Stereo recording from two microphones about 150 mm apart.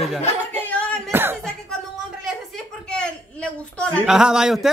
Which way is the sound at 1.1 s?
15° right (ahead or behind).